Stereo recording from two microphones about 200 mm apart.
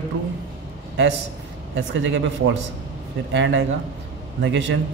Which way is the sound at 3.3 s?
65° right (ahead or behind).